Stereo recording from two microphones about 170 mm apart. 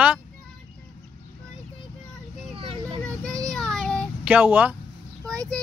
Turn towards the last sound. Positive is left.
turn(degrees=5)  # may be behind; listen again after turning